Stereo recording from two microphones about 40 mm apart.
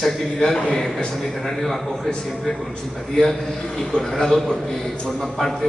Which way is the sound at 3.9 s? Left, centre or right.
Centre.